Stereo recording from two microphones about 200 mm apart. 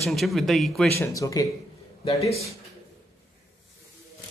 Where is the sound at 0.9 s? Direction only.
15° left (ahead or behind).